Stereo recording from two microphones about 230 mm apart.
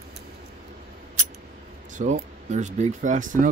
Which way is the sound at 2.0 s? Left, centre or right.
Right.